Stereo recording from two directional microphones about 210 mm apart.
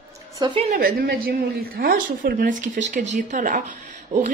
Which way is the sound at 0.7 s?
45° right (ahead or behind).